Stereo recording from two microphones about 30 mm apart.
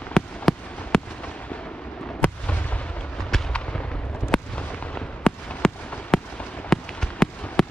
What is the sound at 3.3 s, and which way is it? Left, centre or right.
Fireworks, centre.